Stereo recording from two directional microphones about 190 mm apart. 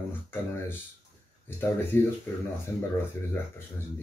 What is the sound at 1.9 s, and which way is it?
Speech, 10° left (ahead or behind).